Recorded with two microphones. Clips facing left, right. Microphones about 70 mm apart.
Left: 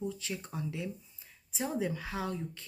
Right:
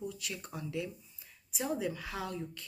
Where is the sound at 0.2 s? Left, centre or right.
Left.